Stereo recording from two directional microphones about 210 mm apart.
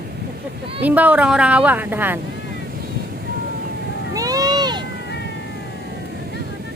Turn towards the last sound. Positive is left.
turn(degrees=-20)  # may be behind; listen again after turning